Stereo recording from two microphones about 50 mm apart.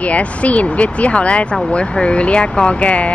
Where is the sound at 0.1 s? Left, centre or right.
Left.